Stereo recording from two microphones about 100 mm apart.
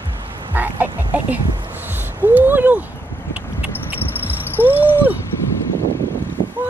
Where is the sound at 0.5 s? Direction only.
20° right (ahead or behind).